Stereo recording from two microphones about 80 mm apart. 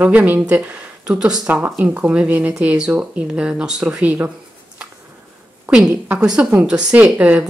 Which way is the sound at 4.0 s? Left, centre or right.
Right.